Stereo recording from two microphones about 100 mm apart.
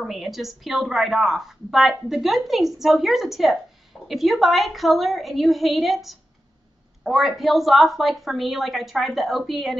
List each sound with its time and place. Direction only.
0.0 s a woman's voice: centre (ahead or behind)